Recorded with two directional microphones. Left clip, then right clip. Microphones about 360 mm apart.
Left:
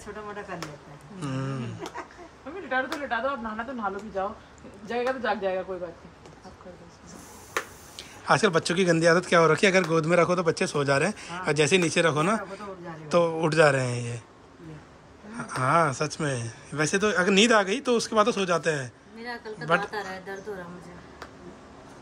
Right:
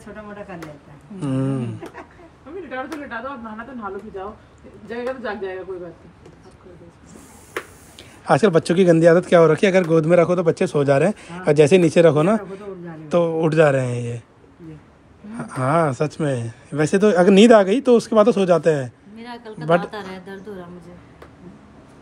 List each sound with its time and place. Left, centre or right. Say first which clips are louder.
1.2 s speech: right 9 dB; centre
4.8 s a man's voice: right 1 dB; centre
8.3 s speech: right 6 dB; centre
15.3 s speech: right 3 dB; centre